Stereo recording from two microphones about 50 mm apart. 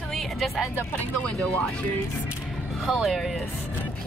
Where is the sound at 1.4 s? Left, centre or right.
Left.